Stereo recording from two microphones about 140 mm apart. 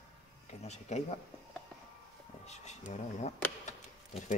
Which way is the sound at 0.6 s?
50° left (ahead or behind).